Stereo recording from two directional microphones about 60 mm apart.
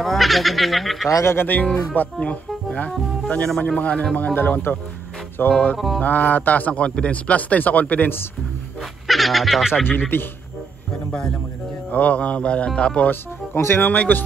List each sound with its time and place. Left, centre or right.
0.0 s speech: centre
1.2 s speech: left
2.1 s a man's voice: left
4.4 s speech: left
5.5 s a man's voice: centre
9.0 s speech: centre
9.8 s speech: left
11.9 s a man's voice: left
13.1 s a man's voice: left